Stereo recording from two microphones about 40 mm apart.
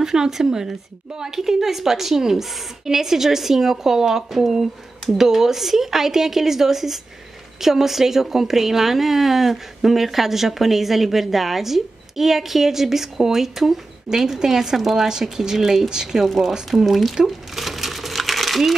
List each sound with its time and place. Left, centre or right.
0.0 s a woman's voice: centre
16.3 s speech: centre
17.1 s crumpling: centre